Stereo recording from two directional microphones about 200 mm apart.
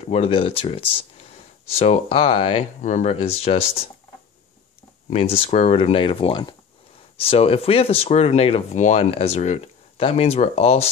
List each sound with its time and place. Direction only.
0.1 s speech: 30° left (ahead or behind)
5.1 s speech: 30° left (ahead or behind)